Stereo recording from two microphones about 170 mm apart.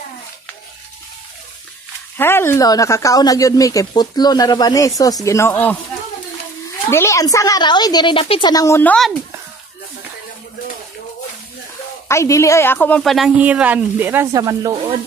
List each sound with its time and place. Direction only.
2.1 s speech: 15° left (ahead or behind)
12.1 s a woman's voice: 15° left (ahead or behind); by 15.0 s 20° right (ahead or behind)